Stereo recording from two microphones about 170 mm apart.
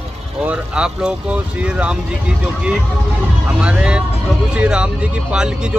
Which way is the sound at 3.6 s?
5° right (ahead or behind).